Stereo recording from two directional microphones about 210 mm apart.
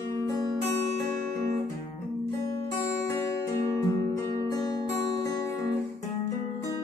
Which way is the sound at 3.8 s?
15° left (ahead or behind).